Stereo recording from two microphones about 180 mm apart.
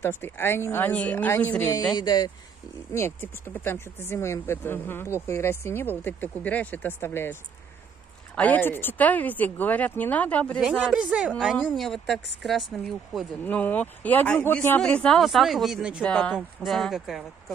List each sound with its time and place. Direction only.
0.0 s speech: 15° left (ahead or behind)
2.0 s speech: 20° left (ahead or behind)
8.4 s speech: 10° left (ahead or behind)
10.6 s speech: 5° right (ahead or behind)
16.0 s speech: 5° left (ahead or behind)